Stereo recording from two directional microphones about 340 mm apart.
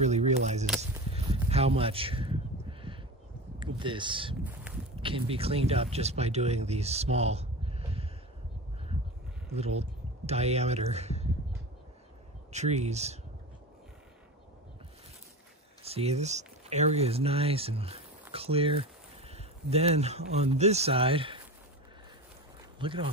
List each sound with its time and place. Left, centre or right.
0.0 s a sound: centre
3.8 s speech: centre
9.5 s speech: centre
12.5 s speech: centre
15.8 s speech: centre
22.8 s speech: centre